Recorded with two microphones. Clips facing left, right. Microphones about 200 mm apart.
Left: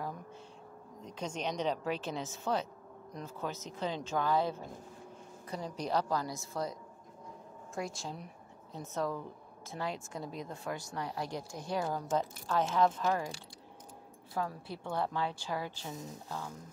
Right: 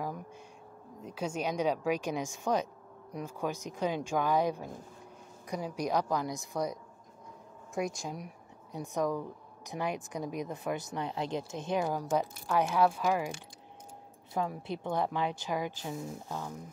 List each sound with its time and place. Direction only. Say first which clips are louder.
1.0 s a woman's voice: right 4 dB; 10° right (ahead or behind)
14.3 s a woman's voice: right 4 dB; 20° right (ahead or behind)